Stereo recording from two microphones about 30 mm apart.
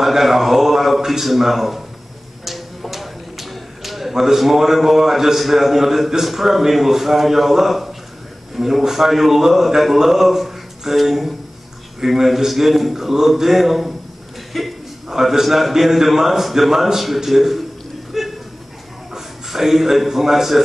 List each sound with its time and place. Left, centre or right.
0.0 s a sound: centre
1.2 s a man's voice: centre
2.4 s a sound: centre
4.1 s a man's voice: centre
14.5 s chuckle: centre
15.0 s a man's voice: centre
15.4 s a man's voice: centre
18.1 s a sound: centre
19.1 s a man's voice: centre